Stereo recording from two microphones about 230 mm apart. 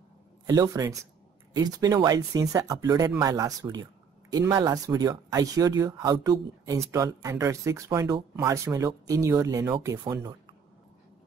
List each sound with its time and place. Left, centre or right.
0.5 s speech: centre